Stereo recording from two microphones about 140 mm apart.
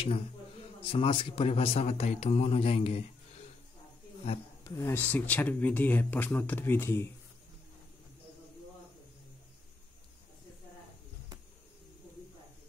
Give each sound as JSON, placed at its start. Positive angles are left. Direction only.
{"t": 0.8, "sound": "speech", "side_deg": 40}
{"t": 4.6, "sound": "speech", "side_deg": 25}
{"t": 4.9, "sound": "speech", "side_deg": 10}